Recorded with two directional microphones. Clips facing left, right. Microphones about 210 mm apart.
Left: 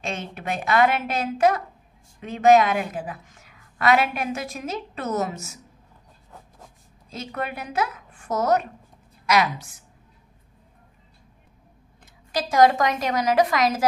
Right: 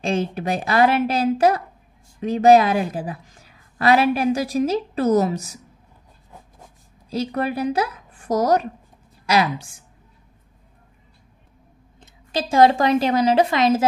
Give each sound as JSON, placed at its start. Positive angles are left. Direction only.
{"t": 0.0, "sound": "a woman's voice", "side_deg": -30}
{"t": 7.1, "sound": "a woman's voice", "side_deg": -35}
{"t": 12.0, "sound": "a woman's voice", "side_deg": -25}